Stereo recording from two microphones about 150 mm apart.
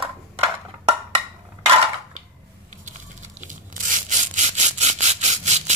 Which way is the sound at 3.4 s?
60° right (ahead or behind).